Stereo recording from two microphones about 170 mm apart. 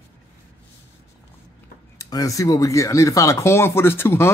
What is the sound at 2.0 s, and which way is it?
Speech, 20° left (ahead or behind).